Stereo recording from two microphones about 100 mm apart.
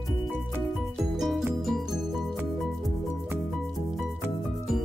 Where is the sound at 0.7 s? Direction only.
Centre (ahead or behind).